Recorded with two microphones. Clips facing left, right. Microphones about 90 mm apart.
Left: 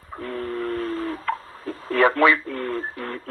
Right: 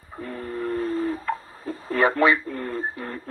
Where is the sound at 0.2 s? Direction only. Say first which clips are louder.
Left 2 dB; 15° right (ahead or behind).